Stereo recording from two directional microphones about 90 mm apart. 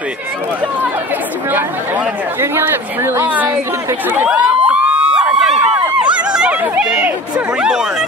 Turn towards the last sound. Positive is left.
turn(degrees=-10)  # may be behind; listen again after turning